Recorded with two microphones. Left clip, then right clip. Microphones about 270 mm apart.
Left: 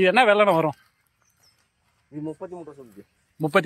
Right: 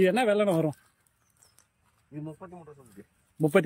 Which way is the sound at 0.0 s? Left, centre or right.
Centre.